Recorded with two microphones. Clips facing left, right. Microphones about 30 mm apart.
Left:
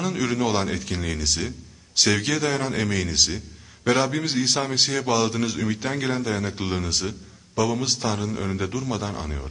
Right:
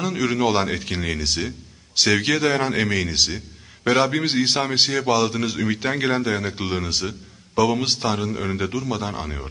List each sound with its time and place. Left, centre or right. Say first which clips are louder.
0.0 s a man's voice: right 3 dB; centre
0.7 s a man's voice: right 2 dB; right
2.0 s a man's voice: right 2 dB; centre
2.2 s a man's voice: right 4 dB; right
7.7 s a man's voice: right 3 dB; right